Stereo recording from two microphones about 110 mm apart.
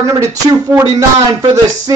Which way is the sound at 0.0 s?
30° right (ahead or behind).